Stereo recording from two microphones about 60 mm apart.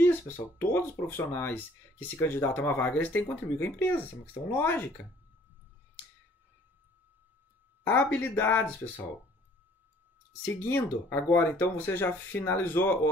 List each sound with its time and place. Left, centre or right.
0.6 s speech: left
7.8 s speech: left
10.4 s speech: left